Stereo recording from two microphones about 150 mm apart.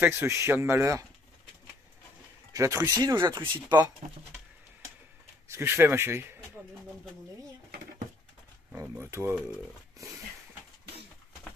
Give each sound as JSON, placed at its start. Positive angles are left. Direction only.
{"t": 0.0, "sound": "speech", "side_deg": -15}
{"t": 2.5, "sound": "speech", "side_deg": -20}
{"t": 5.5, "sound": "speech", "side_deg": -15}
{"t": 8.7, "sound": "speech", "side_deg": -15}
{"t": 9.9, "sound": "a sound", "side_deg": -20}